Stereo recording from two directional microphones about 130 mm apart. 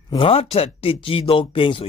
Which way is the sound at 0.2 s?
45° left (ahead or behind).